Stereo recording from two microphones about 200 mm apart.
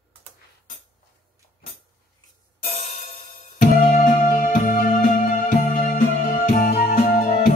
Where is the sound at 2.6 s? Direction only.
35° left (ahead or behind).